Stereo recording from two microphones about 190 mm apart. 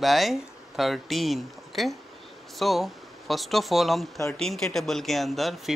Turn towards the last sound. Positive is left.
turn(degrees=0)  # may be behind; listen again after turning